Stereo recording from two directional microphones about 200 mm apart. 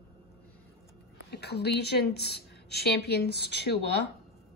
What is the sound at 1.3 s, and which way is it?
A woman's voice, 55° left (ahead or behind).